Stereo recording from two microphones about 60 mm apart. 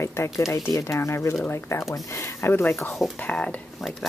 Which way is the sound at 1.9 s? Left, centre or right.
Left.